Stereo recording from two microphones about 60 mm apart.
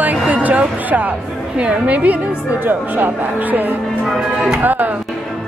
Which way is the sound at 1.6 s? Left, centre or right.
Right.